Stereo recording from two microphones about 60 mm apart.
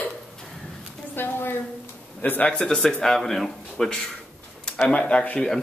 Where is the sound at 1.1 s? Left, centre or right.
Left.